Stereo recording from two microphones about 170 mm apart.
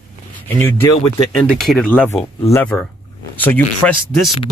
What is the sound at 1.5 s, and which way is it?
Speech, centre (ahead or behind).